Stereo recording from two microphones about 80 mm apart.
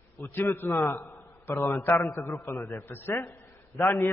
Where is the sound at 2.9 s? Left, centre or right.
Left.